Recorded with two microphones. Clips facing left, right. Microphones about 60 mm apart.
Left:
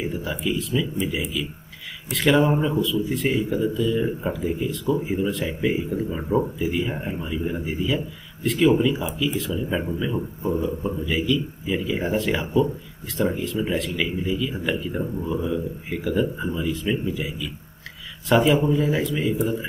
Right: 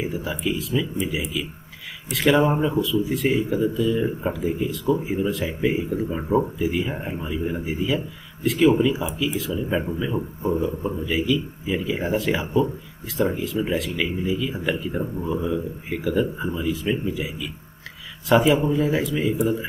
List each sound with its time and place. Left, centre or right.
0.0 s speech: centre